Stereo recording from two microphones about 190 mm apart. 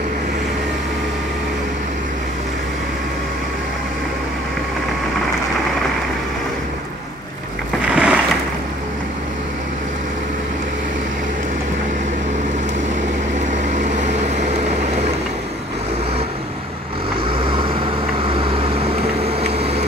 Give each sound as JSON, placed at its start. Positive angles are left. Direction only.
{"t": 7.9, "sound": "a sound", "side_deg": -5}
{"t": 13.9, "sound": "vehicle", "side_deg": -40}
{"t": 17.5, "sound": "vehicle", "side_deg": -30}